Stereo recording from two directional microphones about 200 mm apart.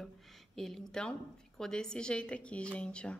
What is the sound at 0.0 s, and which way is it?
A woman's voice, centre (ahead or behind).